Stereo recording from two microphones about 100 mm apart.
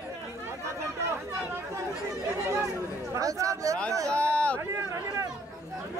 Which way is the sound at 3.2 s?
35° right (ahead or behind).